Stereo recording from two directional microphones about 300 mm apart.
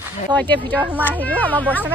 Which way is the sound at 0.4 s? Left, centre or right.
Centre.